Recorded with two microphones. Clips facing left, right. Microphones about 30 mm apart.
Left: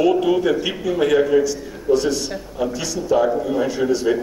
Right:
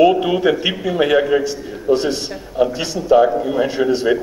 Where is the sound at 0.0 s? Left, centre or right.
Right.